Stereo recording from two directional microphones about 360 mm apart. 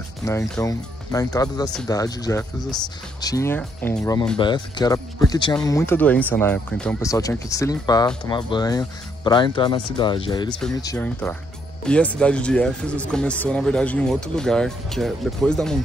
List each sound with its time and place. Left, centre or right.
0.2 s speech: centre